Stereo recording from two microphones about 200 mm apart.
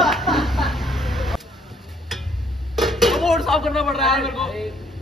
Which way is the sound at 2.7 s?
Centre (ahead or behind).